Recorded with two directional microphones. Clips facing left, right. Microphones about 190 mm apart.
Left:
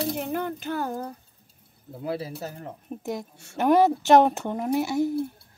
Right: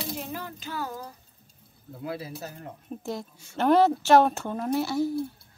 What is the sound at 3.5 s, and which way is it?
Speech, 15° left (ahead or behind).